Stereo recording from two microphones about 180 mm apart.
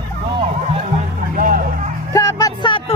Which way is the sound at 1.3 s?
50° right (ahead or behind).